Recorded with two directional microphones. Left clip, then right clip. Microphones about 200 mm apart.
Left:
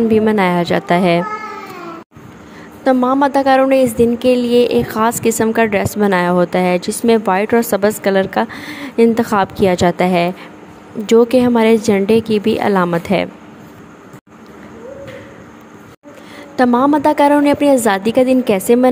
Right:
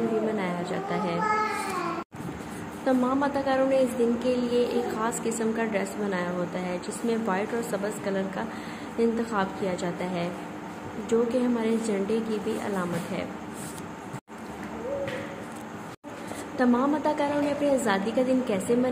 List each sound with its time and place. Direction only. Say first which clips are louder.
0.4 s a woman's voice: left 16 dB; 50° left (ahead or behind)
2.8 s a woman's voice: left 12 dB; 45° left (ahead or behind)
16.5 s a woman's voice: left 12 dB; 50° left (ahead or behind)